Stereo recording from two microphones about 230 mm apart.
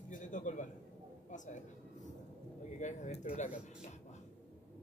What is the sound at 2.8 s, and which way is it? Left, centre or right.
Speech, left.